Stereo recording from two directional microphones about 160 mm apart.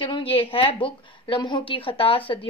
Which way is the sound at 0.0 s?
35° left (ahead or behind).